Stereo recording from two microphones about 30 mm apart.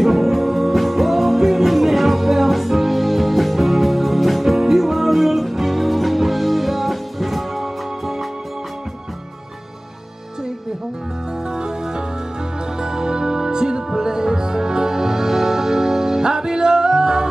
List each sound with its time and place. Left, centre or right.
0.0 s music: centre
11.5 s music: right